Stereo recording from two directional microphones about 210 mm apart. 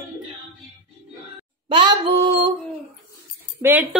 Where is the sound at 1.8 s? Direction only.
25° right (ahead or behind).